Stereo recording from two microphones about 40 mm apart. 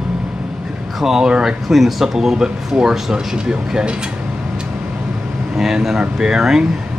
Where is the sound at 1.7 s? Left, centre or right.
Centre.